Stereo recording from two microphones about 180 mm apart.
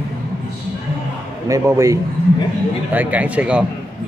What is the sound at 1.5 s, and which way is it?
Speech, 15° right (ahead or behind).